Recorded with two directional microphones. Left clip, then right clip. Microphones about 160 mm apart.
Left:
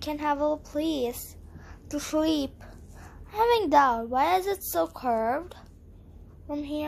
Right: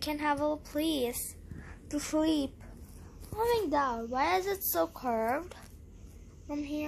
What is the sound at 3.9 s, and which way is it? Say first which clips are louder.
A child's voice: left 5 dB; 20° left (ahead or behind).